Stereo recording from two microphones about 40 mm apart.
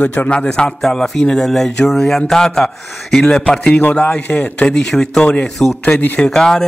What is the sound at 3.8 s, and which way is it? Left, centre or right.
Speech, left.